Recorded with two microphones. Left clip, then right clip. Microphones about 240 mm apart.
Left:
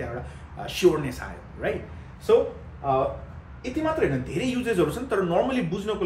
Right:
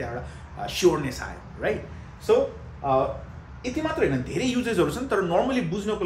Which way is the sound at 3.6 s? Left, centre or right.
Centre.